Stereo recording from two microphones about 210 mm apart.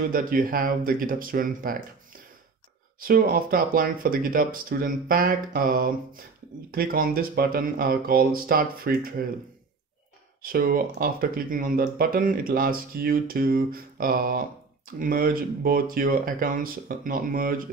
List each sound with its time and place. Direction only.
0.1 s speech: 40° right (ahead or behind)
3.0 s speech: 45° right (ahead or behind)
10.4 s speech: 45° right (ahead or behind)